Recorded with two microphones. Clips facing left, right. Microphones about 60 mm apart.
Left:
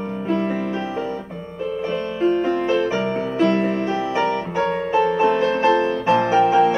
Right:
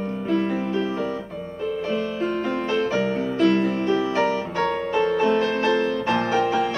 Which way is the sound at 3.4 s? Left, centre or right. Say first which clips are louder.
Left 1 dB; left.